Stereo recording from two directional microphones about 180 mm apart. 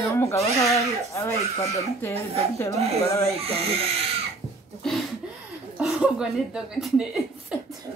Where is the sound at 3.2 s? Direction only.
35° right (ahead or behind).